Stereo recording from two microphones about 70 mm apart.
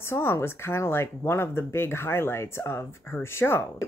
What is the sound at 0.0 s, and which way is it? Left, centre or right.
Speech, left.